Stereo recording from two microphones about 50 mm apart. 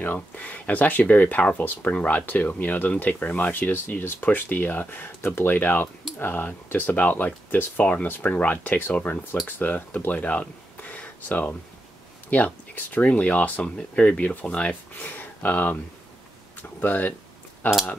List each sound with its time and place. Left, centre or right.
0.0 s speech: left
10.0 s a sound: left
12.3 s speech: left
15.0 s speech: left
16.8 s speech: left